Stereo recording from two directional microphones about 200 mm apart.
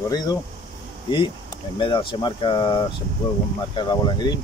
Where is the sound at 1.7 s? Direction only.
25° left (ahead or behind).